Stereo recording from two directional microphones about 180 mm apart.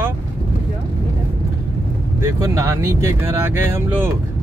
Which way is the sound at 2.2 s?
15° right (ahead or behind).